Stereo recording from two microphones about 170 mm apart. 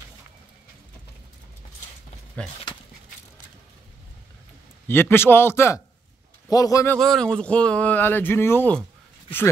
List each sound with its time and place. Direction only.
2.4 s speech: 5° left (ahead or behind)
4.8 s a man's voice: 15° left (ahead or behind)
7.0 s speech: 5° left (ahead or behind)